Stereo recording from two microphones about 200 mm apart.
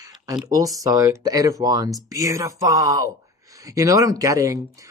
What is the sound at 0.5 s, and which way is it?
Speech, 15° right (ahead or behind).